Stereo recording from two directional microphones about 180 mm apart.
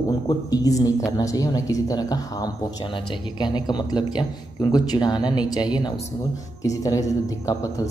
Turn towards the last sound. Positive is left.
turn(degrees=20)  # may be behind; listen again after turning